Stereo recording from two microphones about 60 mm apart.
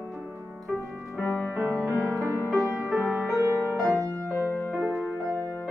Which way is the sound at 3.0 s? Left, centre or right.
Left.